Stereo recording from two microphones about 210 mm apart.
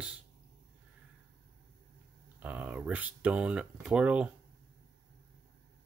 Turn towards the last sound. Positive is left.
turn(degrees=-5)  # may be behind; listen again after turning